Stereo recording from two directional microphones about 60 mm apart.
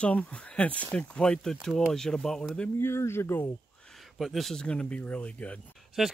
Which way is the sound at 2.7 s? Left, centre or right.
Left.